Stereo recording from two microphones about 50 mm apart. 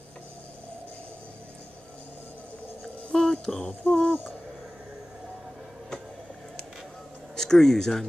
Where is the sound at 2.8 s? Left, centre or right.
Left.